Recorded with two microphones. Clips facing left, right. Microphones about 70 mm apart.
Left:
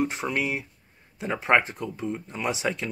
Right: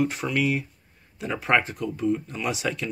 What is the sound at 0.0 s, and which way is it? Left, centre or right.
Speech, left.